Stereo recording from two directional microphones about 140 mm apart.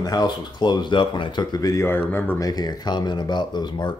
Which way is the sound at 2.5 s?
30° left (ahead or behind).